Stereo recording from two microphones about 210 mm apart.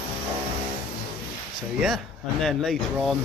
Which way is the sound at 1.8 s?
Centre (ahead or behind).